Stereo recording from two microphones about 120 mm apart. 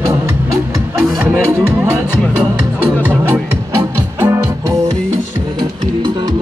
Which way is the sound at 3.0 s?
15° right (ahead or behind).